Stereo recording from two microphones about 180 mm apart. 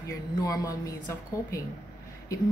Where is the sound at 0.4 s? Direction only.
20° left (ahead or behind).